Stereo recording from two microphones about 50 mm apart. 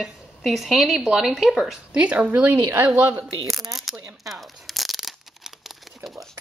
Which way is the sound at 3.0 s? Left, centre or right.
Right.